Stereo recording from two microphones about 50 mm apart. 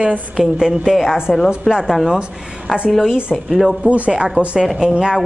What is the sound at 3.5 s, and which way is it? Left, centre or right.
Speech, centre.